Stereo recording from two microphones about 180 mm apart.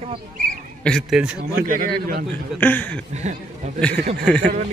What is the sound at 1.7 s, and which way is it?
Speech, 50° right (ahead or behind).